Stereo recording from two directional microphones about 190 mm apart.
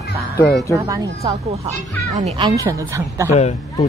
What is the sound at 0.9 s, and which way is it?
Speech, 15° right (ahead or behind).